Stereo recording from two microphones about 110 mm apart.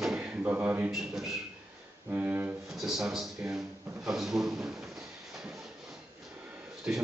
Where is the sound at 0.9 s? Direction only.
5° right (ahead or behind).